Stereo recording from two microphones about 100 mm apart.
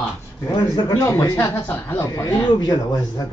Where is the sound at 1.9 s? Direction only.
30° left (ahead or behind).